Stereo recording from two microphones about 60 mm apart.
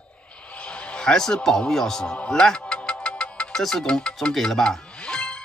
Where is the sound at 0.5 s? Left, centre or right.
Centre.